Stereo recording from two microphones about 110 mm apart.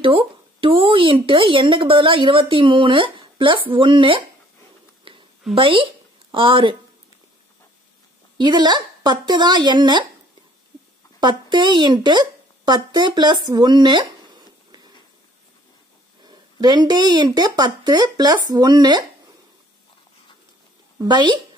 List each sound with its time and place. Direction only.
0.0 s speech: 55° right (ahead or behind)
5.1 s a sound: 50° right (ahead or behind)
5.5 s speech: 50° right (ahead or behind)
8.4 s speech: 45° right (ahead or behind)
11.1 s speech: 45° right (ahead or behind)
16.3 s speech: 40° right (ahead or behind)
21.0 s speech: 45° right (ahead or behind)